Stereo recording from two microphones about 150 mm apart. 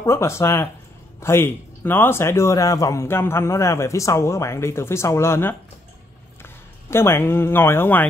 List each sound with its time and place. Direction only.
0.0 s a man's voice: 20° left (ahead or behind)
6.9 s a man's voice: 15° left (ahead or behind)